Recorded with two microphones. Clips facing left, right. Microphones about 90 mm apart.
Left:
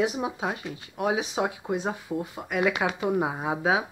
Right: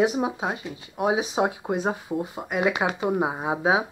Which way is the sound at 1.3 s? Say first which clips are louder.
Right 3 dB; 30° right (ahead or behind).